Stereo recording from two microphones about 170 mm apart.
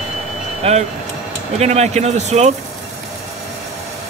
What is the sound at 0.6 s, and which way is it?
Speech, 35° right (ahead or behind).